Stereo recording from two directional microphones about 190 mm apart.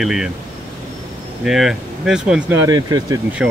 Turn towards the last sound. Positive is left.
turn(degrees=-20)  # may be behind; listen again after turning